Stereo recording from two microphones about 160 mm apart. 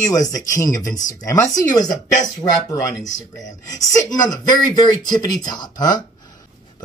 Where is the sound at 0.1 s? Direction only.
20° left (ahead or behind).